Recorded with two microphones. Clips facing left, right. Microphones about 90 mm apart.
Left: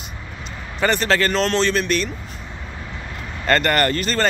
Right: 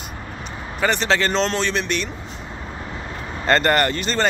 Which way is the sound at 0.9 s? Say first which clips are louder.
Left 1 dB; 20° right (ahead or behind).